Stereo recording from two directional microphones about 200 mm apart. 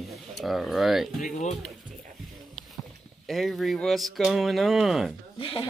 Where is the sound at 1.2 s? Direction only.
35° left (ahead or behind).